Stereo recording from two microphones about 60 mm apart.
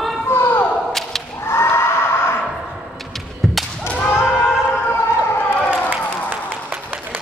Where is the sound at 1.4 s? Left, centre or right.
Left.